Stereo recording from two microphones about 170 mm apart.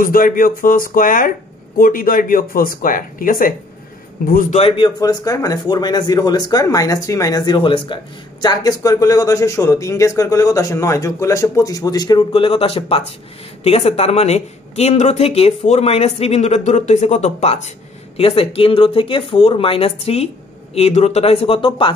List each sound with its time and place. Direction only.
0.0 s a man's voice: 55° left (ahead or behind)
4.6 s speech: 35° left (ahead or behind)
5.0 s speech: 20° left (ahead or behind)